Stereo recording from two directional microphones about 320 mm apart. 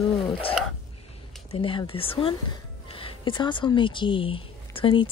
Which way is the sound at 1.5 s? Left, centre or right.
Centre.